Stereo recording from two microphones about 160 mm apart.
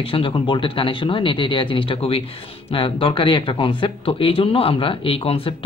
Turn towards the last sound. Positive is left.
turn(degrees=35)  # may be behind; listen again after turning